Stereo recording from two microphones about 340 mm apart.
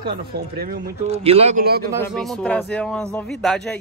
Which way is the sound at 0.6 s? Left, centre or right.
Right.